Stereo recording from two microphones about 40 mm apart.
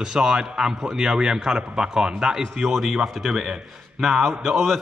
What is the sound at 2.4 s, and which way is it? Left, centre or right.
A man's voice, centre.